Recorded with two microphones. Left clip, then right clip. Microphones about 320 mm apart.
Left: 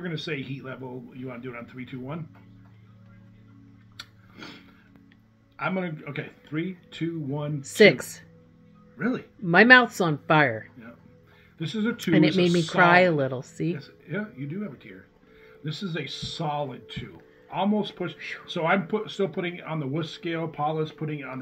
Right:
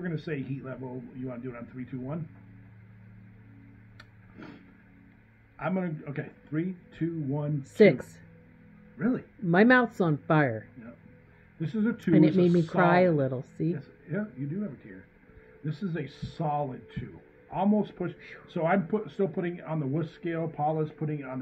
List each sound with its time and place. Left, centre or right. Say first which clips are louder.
0.0 s speech: left 3 dB; centre
3.9 s tick-tock: left 10 dB; left
5.6 s speech: left 3 dB; centre
11.6 s speech: left 2 dB; centre
12.7 s speech: left 6 dB; centre